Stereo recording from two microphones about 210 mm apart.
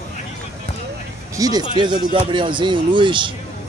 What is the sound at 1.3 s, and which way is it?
A man's voice, 15° right (ahead or behind).